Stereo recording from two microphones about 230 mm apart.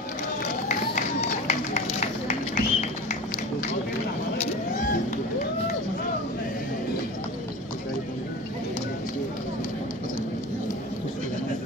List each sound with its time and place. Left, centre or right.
1.5 s run: left